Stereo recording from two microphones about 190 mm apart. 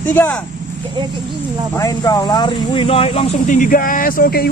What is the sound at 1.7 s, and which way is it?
Speech, 20° left (ahead or behind).